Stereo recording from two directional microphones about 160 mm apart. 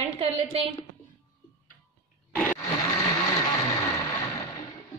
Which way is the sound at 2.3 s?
10° left (ahead or behind).